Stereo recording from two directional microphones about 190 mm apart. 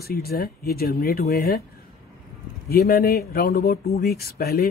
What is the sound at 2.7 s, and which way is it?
Speech, 55° left (ahead or behind).